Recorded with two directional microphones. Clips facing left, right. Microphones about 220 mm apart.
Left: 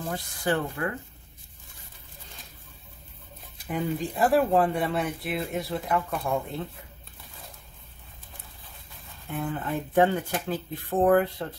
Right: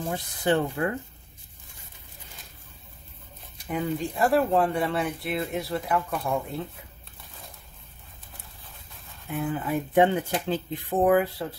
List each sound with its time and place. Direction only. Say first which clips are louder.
0.1 s speech: right 3 dB; 25° right (ahead or behind)
3.6 s speech: right 1 dB; centre (ahead or behind)
9.3 s speech: right 2 dB; centre (ahead or behind)
9.9 s speech: right 1 dB; 15° right (ahead or behind)
11.1 s speech: even; centre (ahead or behind)